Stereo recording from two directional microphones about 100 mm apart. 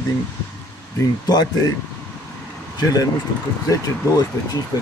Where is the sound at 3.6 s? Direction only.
40° left (ahead or behind).